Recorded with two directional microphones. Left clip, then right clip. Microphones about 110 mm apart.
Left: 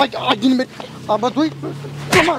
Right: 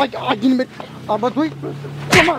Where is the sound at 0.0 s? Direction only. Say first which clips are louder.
Left 2 dB; 30° left (ahead or behind).